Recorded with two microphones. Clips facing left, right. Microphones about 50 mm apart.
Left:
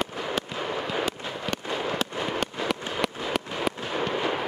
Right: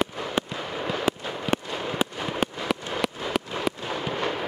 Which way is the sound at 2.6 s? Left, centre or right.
Centre.